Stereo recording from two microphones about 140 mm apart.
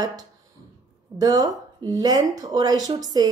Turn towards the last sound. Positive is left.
turn(degrees=-30)  # may be behind; listen again after turning